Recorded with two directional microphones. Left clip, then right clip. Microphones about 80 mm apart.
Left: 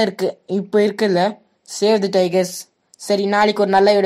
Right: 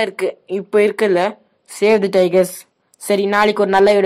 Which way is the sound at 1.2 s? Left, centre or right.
Left.